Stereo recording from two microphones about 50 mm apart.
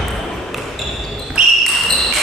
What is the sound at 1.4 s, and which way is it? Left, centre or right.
Basketball bounce, centre.